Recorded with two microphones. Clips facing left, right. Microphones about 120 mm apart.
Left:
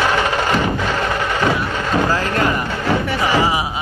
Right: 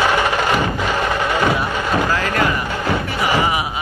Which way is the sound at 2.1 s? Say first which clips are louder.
Even; 40° left (ahead or behind).